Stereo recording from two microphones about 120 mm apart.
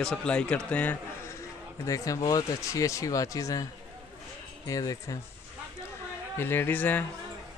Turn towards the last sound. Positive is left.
turn(degrees=15)  # may be behind; listen again after turning